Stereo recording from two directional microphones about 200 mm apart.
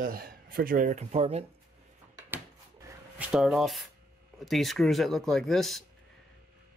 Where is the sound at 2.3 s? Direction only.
10° right (ahead or behind).